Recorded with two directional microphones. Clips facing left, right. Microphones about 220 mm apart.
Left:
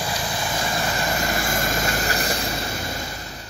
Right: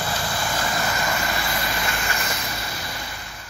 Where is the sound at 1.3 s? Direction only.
45° left (ahead or behind).